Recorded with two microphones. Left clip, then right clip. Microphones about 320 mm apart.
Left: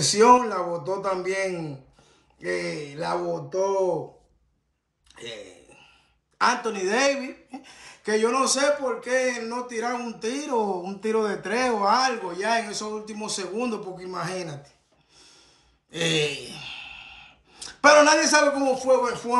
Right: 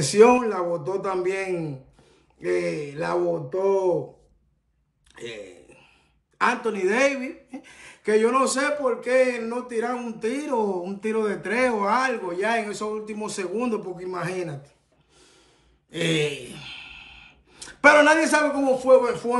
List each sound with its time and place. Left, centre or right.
0.1 s speech: centre
5.1 s speech: centre
15.9 s speech: centre